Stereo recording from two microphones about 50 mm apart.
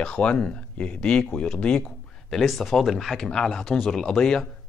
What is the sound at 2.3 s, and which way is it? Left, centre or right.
Speech, centre.